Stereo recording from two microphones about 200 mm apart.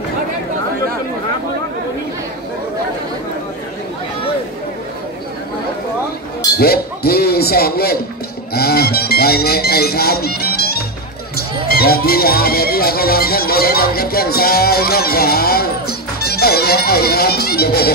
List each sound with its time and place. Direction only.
6.5 s speech: 50° left (ahead or behind)